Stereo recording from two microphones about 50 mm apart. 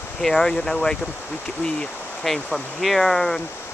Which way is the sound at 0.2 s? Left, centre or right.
Centre.